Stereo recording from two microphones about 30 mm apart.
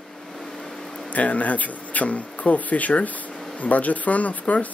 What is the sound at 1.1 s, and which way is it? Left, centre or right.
Speech, left.